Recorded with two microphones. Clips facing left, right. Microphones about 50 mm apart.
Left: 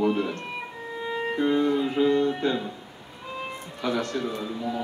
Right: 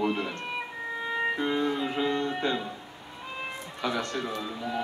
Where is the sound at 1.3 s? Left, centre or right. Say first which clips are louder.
Left 5 dB; centre.